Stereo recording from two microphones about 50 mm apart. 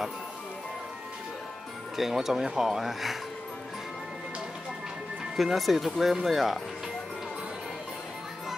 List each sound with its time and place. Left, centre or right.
2.0 s speech: centre
5.3 s speech: centre